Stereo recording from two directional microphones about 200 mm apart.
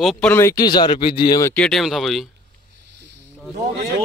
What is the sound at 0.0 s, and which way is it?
Speech, 5° left (ahead or behind).